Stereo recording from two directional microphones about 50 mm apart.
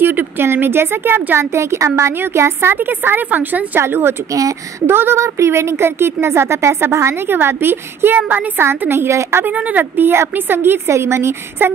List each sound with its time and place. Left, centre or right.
0.0 s speech: right
1.4 s a woman's voice: right
2.7 s a woman's voice: right
4.8 s a woman's voice: right
5.2 s speech: right
7.2 s a woman's voice: right
8.6 s speech: right
9.7 s a woman's voice: right
10.9 s speech: right